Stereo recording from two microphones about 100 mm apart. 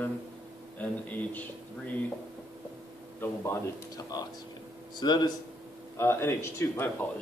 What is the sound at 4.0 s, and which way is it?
Speech, 40° left (ahead or behind).